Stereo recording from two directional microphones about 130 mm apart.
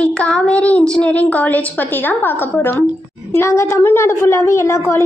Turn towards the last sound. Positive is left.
turn(degrees=20)  # may be behind; listen again after turning